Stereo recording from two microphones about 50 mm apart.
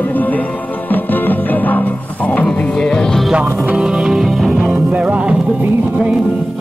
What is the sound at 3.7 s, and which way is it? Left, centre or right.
Music, centre.